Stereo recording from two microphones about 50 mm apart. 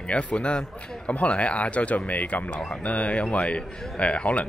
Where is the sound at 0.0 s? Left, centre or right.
Left.